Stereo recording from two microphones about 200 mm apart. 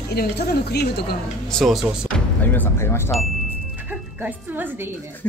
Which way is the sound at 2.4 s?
10° left (ahead or behind).